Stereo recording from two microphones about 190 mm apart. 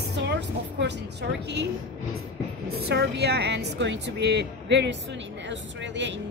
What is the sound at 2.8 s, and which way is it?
A woman's voice, 60° right (ahead or behind).